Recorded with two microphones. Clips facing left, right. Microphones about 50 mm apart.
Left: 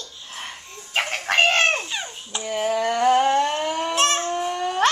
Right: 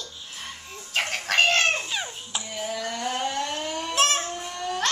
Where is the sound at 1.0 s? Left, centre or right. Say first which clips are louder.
Left 3 dB; centre.